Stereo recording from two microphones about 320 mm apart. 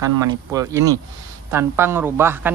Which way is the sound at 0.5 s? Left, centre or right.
Centre.